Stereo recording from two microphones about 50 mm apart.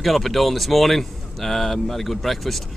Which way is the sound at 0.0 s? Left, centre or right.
Centre.